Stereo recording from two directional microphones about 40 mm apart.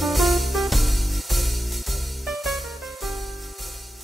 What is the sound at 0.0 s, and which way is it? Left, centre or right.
Music, centre.